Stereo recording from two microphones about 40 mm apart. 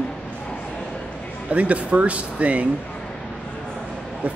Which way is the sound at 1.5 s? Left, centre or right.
Right.